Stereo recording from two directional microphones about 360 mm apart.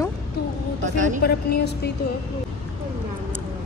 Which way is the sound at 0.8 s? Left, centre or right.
Right.